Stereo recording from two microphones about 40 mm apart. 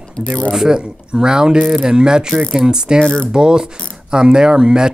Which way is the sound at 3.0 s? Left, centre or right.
Left.